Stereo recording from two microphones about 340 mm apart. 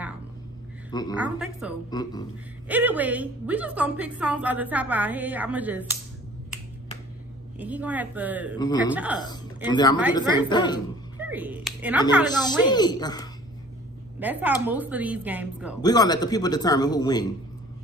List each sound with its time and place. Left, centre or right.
1.1 s a woman's voice: centre
1.9 s speech: centre
2.7 s a woman's voice: centre
7.5 s a woman's voice: centre
8.5 s speech: centre
8.9 s a woman's voice: centre
9.7 s speech: centre
11.1 s speech: centre
12.3 s speech: centre
14.2 s a woman's voice: centre
15.8 s speech: centre